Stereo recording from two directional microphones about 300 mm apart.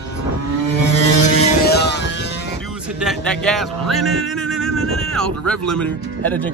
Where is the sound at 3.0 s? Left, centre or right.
Centre.